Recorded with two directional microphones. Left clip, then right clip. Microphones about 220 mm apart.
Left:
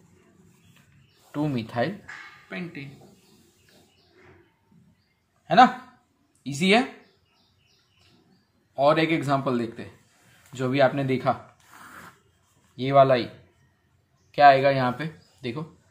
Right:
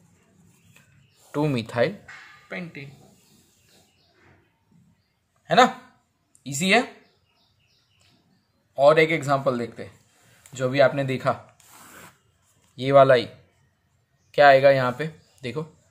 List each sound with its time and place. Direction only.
1.3 s a man's voice: 40° right (ahead or behind)
6.4 s a man's voice: 35° right (ahead or behind)
8.7 s a man's voice: 35° right (ahead or behind)
11.8 s rub: 30° right (ahead or behind)
12.7 s a man's voice: 40° right (ahead or behind)
14.3 s speech: 35° right (ahead or behind)